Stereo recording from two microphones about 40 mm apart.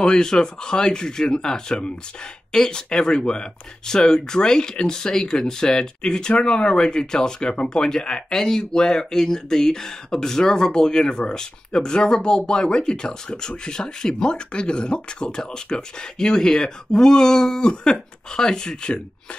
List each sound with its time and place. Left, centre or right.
0.0 s speech: centre